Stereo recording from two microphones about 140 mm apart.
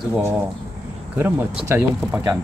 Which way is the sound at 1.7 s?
15° right (ahead or behind).